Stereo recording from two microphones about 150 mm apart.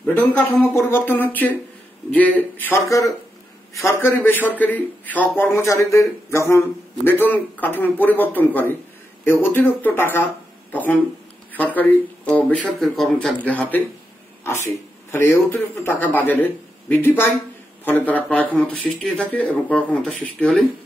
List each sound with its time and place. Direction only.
0.0 s speech: 10° left (ahead or behind)
15.0 s speech: 15° left (ahead or behind)